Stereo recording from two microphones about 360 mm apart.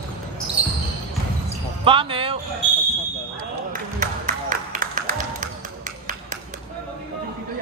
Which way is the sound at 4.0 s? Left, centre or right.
Right.